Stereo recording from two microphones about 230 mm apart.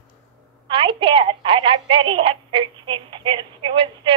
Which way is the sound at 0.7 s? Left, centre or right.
Right.